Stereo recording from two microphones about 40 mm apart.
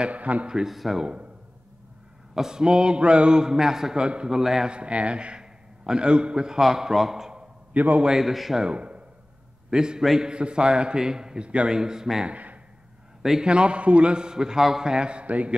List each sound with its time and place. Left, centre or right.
0.0 s speech: right
0.7 s speech: centre
2.3 s a man's voice: centre
4.6 s a man's voice: right
6.6 s a man's voice: centre
7.7 s a man's voice: right
8.2 s a man's voice: centre
8.5 s a man's voice: right
9.7 s a man's voice: centre
10.3 s a man's voice: right
11.7 s a man's voice: centre
12.3 s speech: right
13.2 s a man's voice: centre
13.5 s a man's voice: right